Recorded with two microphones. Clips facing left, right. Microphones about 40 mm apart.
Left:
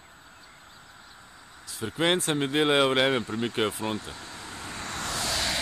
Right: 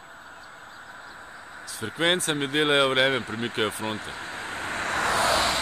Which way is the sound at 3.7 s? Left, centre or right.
Right.